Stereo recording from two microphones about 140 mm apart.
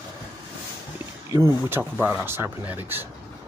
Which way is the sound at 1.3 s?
15° right (ahead or behind).